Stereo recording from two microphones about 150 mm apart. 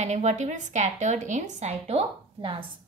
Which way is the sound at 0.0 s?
50° right (ahead or behind).